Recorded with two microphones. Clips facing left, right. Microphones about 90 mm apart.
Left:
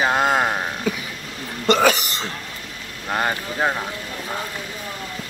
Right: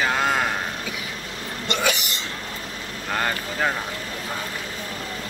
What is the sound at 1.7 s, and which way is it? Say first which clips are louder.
Speech: left 8 dB; 40° left (ahead or behind).